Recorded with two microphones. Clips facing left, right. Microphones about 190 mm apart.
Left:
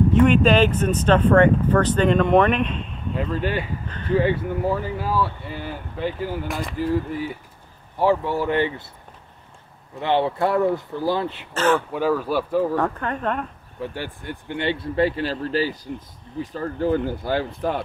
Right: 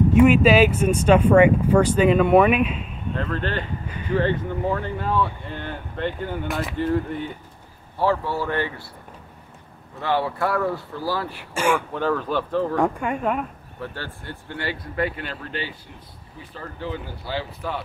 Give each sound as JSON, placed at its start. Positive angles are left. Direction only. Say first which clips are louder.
{"t": 0.1, "sound": "speech", "louder": "right 2 dB", "side_deg": -10}
{"t": 3.2, "sound": "speech", "louder": "left 2 dB", "side_deg": 10}
{"t": 3.8, "sound": "speech", "louder": "even", "side_deg": -10}
{"t": 4.1, "sound": "speech", "louder": "left 2 dB", "side_deg": 10}
{"t": 8.0, "sound": "speech", "louder": "left 2 dB", "side_deg": 15}
{"t": 9.9, "sound": "speech", "louder": "left 3 dB", "side_deg": 20}
{"t": 11.5, "sound": "speech", "louder": "left 2 dB", "side_deg": -10}
{"t": 11.9, "sound": "speech", "louder": "left 2 dB", "side_deg": 10}
{"t": 12.7, "sound": "speech", "louder": "right 1 dB", "side_deg": -10}
{"t": 13.7, "sound": "speech", "louder": "left 4 dB", "side_deg": 15}